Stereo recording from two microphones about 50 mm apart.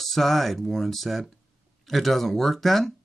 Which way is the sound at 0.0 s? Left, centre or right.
Centre.